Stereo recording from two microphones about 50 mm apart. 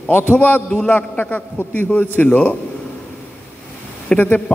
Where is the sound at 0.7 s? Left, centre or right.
Left.